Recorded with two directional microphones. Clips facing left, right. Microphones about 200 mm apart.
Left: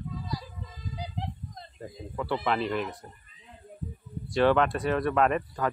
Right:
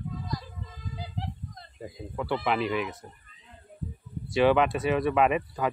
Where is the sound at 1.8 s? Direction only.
5° right (ahead or behind).